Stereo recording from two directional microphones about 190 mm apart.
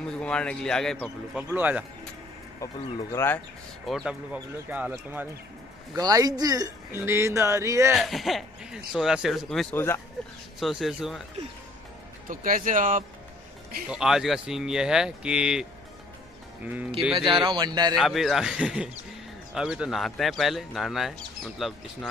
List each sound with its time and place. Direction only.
0.1 s a man's voice: 5° left (ahead or behind)
2.6 s speech: 15° left (ahead or behind)
3.8 s speech: centre (ahead or behind)
5.9 s speech: 20° right (ahead or behind)
7.9 s a man's voice: centre (ahead or behind)
10.6 s a man's voice: centre (ahead or behind)
12.3 s speech: 45° right (ahead or behind)
13.8 s a man's voice: 5° right (ahead or behind)
17.0 s a man's voice: centre (ahead or behind)
17.3 s speech: 25° right (ahead or behind)
17.9 s a man's voice: centre (ahead or behind)